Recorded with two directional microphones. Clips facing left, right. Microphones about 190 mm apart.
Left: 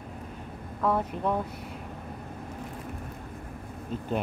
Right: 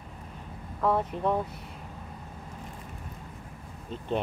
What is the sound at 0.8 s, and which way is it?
Speech, centre (ahead or behind).